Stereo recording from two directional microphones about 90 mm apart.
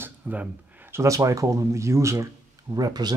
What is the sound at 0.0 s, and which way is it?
Speech, 20° right (ahead or behind).